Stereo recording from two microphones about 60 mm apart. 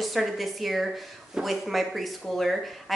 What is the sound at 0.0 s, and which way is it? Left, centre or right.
Speech, centre.